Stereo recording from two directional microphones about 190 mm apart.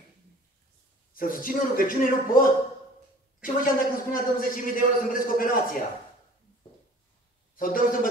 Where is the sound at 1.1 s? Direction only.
45° left (ahead or behind).